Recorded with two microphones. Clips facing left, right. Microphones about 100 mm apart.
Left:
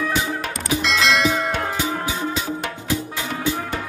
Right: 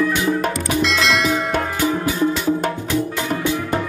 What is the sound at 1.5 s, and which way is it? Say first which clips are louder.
Music: right 4 dB; 55° right (ahead or behind).